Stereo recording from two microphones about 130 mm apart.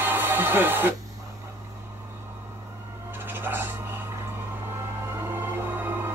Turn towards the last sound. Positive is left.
turn(degrees=-15)  # may be behind; listen again after turning